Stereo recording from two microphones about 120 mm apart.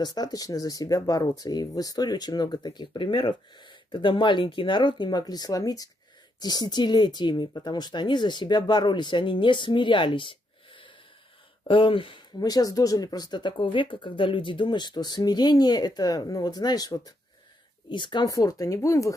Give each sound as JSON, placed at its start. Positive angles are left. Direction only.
{"t": 0.0, "sound": "speech", "side_deg": 35}
{"t": 12.4, "sound": "speech", "side_deg": 30}